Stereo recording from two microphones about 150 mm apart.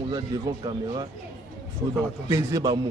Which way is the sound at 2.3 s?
20° right (ahead or behind).